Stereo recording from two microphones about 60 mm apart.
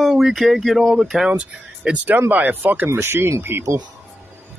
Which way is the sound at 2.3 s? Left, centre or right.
Right.